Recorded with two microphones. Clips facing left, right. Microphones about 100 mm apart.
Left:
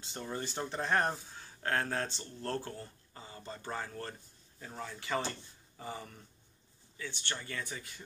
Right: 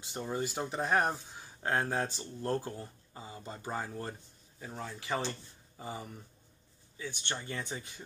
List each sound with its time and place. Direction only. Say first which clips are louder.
0.0 s speech: right 4 dB; 15° right (ahead or behind)